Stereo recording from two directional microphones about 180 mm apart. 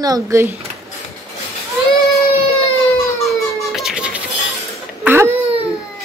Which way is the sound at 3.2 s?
Centre (ahead or behind).